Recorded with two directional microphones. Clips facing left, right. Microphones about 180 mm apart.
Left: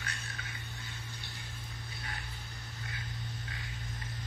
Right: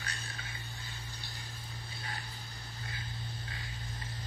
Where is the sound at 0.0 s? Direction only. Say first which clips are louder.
Even; 30° right (ahead or behind).